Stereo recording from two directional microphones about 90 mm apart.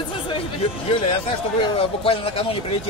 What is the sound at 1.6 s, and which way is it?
Speech, 90° left.